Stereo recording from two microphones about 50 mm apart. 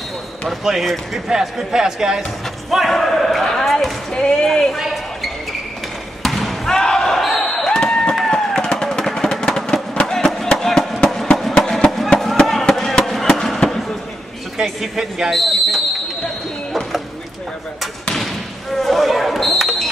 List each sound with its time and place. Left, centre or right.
0.7 s speech: centre
2.9 s battle cry: centre
3.4 s a sound: centre
4.1 s a woman's voice: centre
4.7 s basketball bounce: centre
8.3 s a sound: centre
11.5 s music: centre
12.2 s a sound: centre
12.6 s fireworks: centre
14.6 s speech: centre
18.8 s basketball bounce: centre